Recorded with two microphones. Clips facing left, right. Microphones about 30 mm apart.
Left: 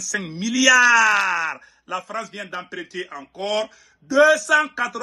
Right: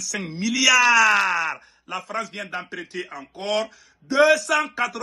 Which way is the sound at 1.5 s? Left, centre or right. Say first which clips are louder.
Left 2 dB; right.